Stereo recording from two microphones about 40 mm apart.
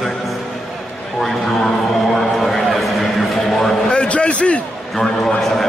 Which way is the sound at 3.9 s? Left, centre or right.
Left.